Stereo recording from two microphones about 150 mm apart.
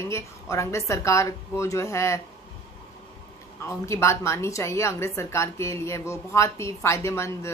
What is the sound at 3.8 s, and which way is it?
A woman's voice, 20° left (ahead or behind).